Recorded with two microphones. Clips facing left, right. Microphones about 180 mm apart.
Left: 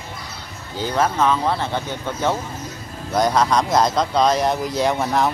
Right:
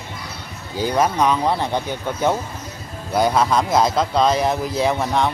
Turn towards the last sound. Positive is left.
turn(degrees=5)  # may be behind; listen again after turning